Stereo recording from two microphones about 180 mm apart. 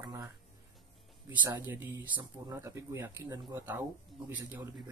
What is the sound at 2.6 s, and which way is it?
Speech, 15° right (ahead or behind).